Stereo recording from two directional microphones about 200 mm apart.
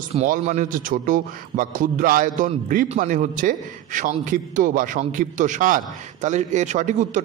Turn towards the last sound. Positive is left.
turn(degrees=-35)  # may be behind; listen again after turning